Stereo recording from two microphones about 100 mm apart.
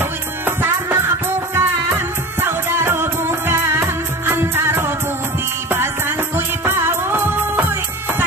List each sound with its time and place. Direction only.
0.5 s music: 25° right (ahead or behind)